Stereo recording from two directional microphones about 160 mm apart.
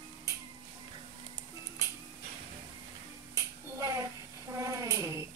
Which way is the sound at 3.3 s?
20° right (ahead or behind).